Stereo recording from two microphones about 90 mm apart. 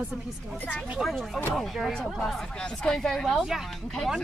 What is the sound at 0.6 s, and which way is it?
Speech, 20° left (ahead or behind).